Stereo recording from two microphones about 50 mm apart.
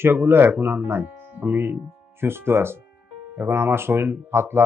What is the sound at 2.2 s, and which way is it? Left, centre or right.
Speech, right.